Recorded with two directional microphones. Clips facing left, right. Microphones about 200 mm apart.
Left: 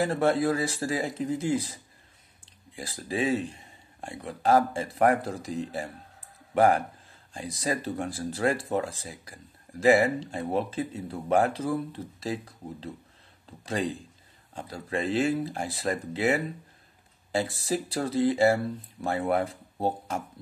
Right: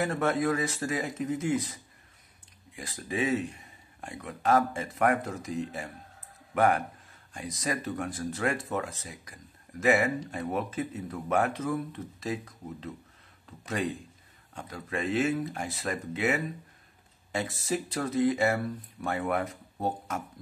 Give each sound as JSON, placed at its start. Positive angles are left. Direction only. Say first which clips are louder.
{"t": 0.0, "sound": "speech", "louder": "left 3 dB", "side_deg": 30}